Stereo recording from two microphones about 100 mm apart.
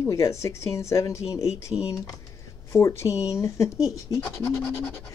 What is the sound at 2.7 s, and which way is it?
Speech, 30° left (ahead or behind).